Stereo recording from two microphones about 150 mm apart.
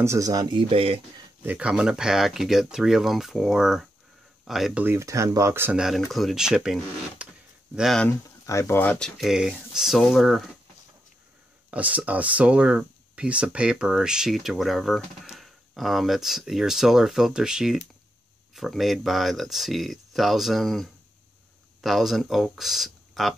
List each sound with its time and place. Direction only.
0.0 s speech: 20° right (ahead or behind); by 1.2 s 40° right (ahead or behind)
1.4 s speech: 10° right (ahead or behind)
4.8 s speech: 20° right (ahead or behind)
5.8 s speech: centre (ahead or behind)
8.5 s speech: 20° left (ahead or behind)
9.2 s speech: 5° right (ahead or behind)
11.7 s speech: 10° right (ahead or behind)